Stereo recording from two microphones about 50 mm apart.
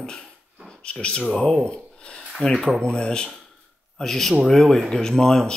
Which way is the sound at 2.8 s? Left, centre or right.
Centre.